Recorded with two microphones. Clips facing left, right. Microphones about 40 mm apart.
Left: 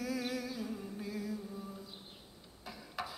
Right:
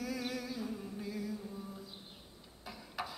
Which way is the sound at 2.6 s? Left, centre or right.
Centre.